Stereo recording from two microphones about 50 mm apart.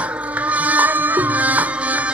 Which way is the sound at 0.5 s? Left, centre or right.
Right.